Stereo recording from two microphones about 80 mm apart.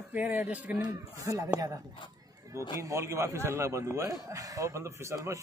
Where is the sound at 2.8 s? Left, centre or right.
Right.